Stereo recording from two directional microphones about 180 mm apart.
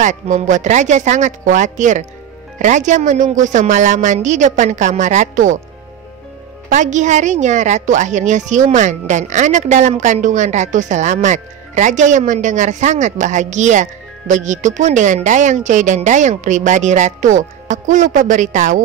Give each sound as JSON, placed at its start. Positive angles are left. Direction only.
{"t": 0.0, "sound": "a woman's voice", "side_deg": -45}
{"t": 6.7, "sound": "a woman's voice", "side_deg": -40}